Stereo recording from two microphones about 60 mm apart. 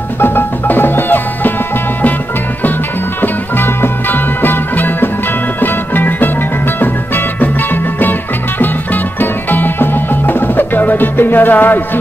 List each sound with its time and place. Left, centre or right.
0.2 s music: left
3.2 s music: left
8.5 s music: left